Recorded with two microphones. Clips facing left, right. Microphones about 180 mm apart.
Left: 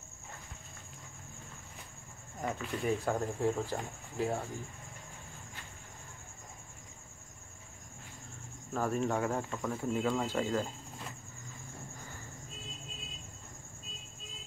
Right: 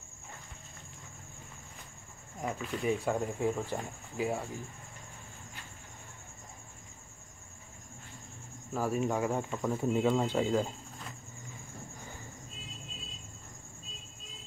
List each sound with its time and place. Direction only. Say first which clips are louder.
2.4 s speech: right 1 dB; 5° right (ahead or behind)
8.7 s speech: right 1 dB; 5° right (ahead or behind)